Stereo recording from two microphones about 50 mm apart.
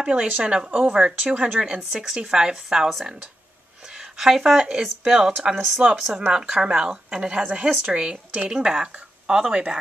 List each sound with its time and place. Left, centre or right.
0.0 s speech: centre
0.8 s a woman's voice: centre